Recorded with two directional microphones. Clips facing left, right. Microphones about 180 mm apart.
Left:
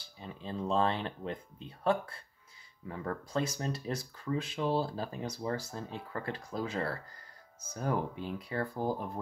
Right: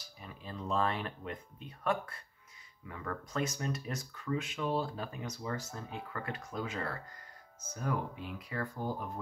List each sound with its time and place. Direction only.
0.0 s speech: 25° left (ahead or behind)